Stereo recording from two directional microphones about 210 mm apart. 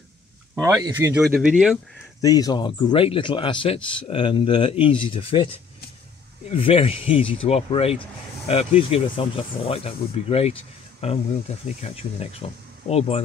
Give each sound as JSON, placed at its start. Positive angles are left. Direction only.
{"t": 0.6, "sound": "speech", "side_deg": -15}
{"t": 1.2, "sound": "speech", "side_deg": -5}
{"t": 2.2, "sound": "speech", "side_deg": 15}
{"t": 6.5, "sound": "speech", "side_deg": 25}